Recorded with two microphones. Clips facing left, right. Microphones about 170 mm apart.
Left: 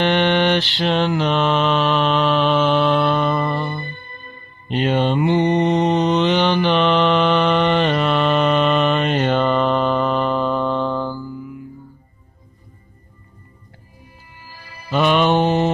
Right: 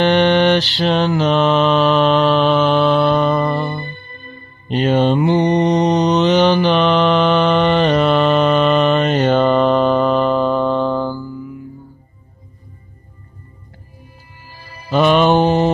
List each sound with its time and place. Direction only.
0.0 s mantra: 40° right (ahead or behind)
14.9 s mantra: 40° right (ahead or behind)